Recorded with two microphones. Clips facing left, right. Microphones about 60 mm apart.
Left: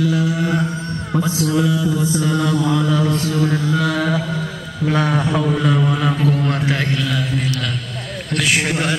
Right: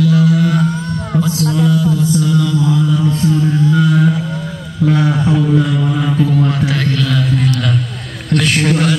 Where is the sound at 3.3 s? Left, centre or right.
Left.